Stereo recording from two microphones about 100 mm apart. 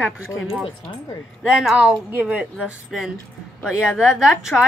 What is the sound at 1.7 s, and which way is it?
Speech, 15° right (ahead or behind).